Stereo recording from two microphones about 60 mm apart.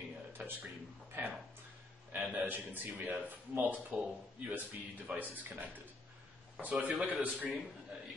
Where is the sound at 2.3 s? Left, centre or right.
Right.